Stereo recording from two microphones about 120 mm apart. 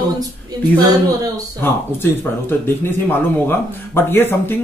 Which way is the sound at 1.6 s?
20° left (ahead or behind).